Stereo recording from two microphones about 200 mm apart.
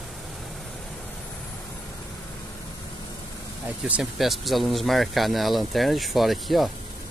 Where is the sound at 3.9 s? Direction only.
Centre (ahead or behind).